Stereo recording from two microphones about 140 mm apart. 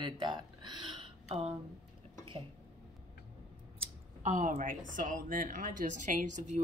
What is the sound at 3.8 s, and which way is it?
Speech, 60° right (ahead or behind).